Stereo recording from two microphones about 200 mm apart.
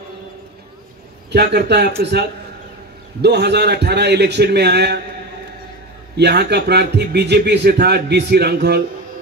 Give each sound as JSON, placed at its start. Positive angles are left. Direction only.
{"t": 1.3, "sound": "a man's voice", "side_deg": -55}
{"t": 6.1, "sound": "a man's voice", "side_deg": -55}